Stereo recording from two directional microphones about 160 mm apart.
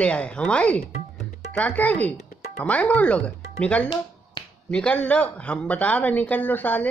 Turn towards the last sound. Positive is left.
turn(degrees=10)  # may be behind; listen again after turning